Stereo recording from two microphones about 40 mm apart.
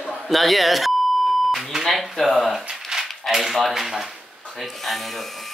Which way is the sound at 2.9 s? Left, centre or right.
Centre.